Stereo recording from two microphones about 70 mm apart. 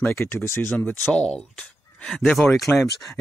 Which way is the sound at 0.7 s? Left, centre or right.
Centre.